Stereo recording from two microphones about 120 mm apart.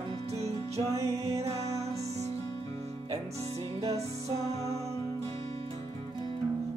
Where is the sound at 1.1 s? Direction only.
65° right (ahead or behind).